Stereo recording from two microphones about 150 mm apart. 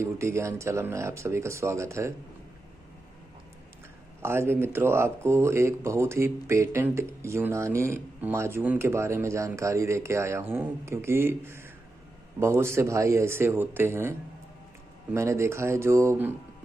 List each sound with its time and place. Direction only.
0.0 s speech: 20° right (ahead or behind)
4.2 s speech: 15° right (ahead or behind)
15.1 s speech: 20° right (ahead or behind)